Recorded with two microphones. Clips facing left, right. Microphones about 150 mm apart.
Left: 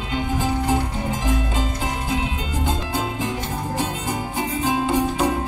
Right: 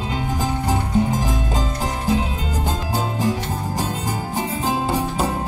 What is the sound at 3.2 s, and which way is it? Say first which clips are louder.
Music: right 3 dB; 40° right (ahead or behind).